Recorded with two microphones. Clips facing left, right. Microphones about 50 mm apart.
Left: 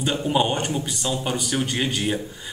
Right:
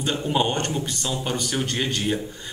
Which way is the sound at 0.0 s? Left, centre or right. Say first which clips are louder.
Left 1 dB; centre.